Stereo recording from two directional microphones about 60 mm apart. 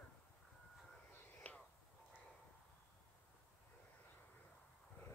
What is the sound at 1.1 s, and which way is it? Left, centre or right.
Whispering, left.